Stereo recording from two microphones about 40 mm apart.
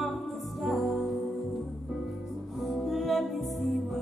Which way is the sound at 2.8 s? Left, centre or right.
Centre.